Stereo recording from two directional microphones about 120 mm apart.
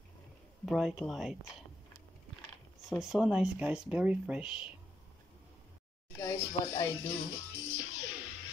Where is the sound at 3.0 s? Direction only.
5° right (ahead or behind).